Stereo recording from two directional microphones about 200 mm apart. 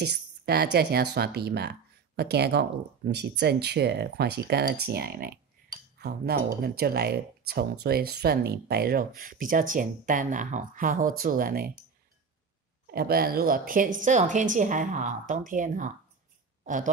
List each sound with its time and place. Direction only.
0.0 s speech: 55° right (ahead or behind)
12.8 s a woman's voice: 50° right (ahead or behind)